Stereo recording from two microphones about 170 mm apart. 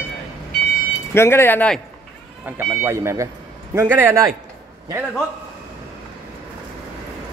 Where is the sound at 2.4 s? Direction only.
15° right (ahead or behind).